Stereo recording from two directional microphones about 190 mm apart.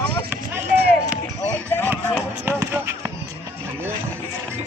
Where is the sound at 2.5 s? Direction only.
10° right (ahead or behind).